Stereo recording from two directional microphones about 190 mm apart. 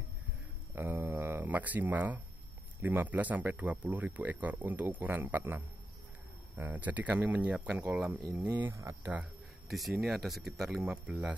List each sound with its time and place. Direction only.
0.7 s a sound: 10° right (ahead or behind)
2.8 s speech: 10° right (ahead or behind)
8.2 s speech: 20° right (ahead or behind)
9.2 s speech: centre (ahead or behind)